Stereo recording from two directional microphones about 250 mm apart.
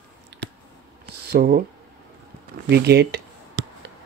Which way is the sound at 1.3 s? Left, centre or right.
Right.